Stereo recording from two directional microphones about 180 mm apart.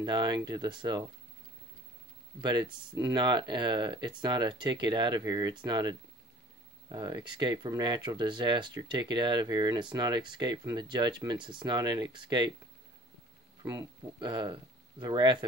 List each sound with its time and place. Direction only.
0.0 s speech: 25° right (ahead or behind)
2.4 s speech: 25° right (ahead or behind)
13.6 s speech: 20° right (ahead or behind)